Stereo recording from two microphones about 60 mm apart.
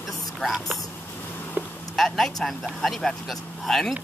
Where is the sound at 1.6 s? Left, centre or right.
Right.